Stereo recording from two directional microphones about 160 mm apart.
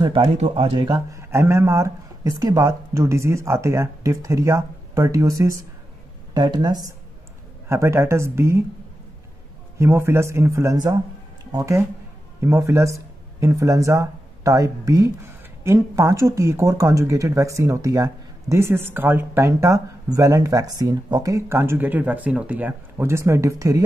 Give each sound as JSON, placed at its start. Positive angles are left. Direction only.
{"t": 0.0, "sound": "speech", "side_deg": -30}
{"t": 9.8, "sound": "speech", "side_deg": -15}